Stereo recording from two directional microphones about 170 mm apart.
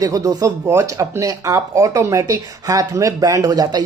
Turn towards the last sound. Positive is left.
turn(degrees=-25)  # may be behind; listen again after turning